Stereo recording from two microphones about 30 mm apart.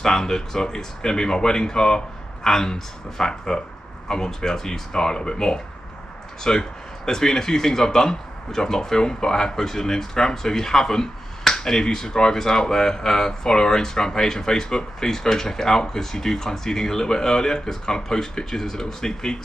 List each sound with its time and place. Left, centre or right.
0.0 s speech: centre